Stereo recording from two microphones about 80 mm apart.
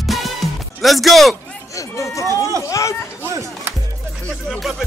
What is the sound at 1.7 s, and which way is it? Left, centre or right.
Speech, left.